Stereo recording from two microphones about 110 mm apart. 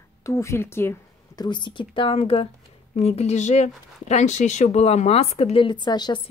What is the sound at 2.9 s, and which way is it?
Speech, 70° left (ahead or behind).